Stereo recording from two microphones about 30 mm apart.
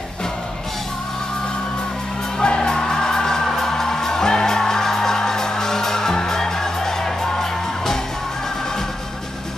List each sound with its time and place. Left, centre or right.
2.3 s music: left